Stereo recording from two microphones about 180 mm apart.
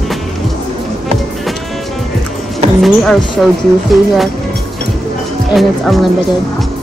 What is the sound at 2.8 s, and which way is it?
Speech, centre (ahead or behind).